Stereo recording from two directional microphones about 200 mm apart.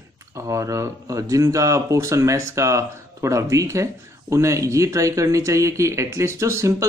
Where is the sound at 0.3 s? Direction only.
15° right (ahead or behind).